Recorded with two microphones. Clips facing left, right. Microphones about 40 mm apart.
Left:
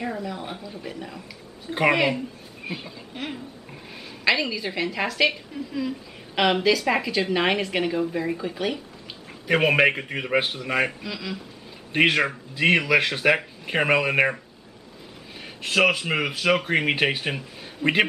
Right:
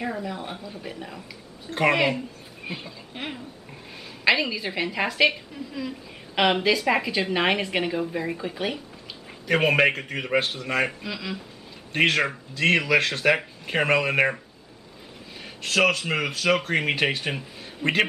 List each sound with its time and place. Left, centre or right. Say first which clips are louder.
0.0 s speech: even; centre
1.7 s speech: left 1 dB; centre
3.1 s a woman's voice: left 1 dB; centre
9.5 s speech: left 1 dB; centre
10.9 s speech: even; centre
11.9 s speech: left 1 dB; centre
15.6 s speech: left 1 dB; centre